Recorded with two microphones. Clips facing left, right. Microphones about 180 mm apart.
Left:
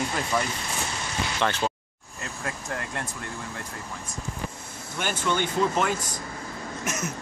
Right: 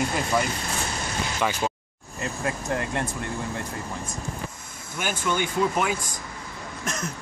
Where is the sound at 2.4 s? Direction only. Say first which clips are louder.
Right 5 dB; 20° right (ahead or behind).